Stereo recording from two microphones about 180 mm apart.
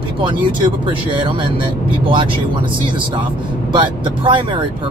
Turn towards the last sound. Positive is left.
turn(degrees=-25)  # may be behind; listen again after turning